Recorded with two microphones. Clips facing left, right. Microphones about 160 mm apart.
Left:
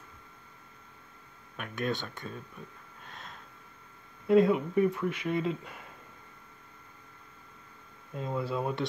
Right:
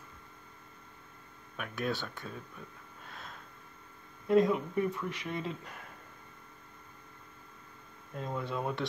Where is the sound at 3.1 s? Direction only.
Centre (ahead or behind).